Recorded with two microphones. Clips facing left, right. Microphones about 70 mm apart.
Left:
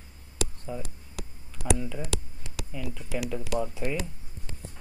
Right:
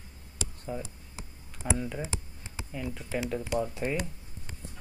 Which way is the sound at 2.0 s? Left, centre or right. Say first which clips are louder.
Left 3 dB; left.